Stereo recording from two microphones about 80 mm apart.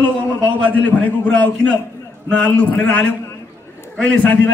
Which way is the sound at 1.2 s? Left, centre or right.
Centre.